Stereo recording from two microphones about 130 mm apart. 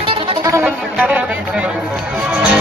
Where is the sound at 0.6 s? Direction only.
10° right (ahead or behind).